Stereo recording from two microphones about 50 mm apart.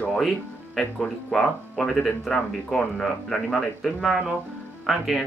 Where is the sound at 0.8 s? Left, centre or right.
Centre.